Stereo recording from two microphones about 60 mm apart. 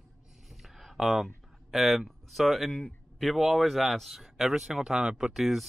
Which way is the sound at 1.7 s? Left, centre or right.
Centre.